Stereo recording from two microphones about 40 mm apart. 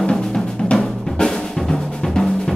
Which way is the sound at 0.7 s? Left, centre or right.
Centre.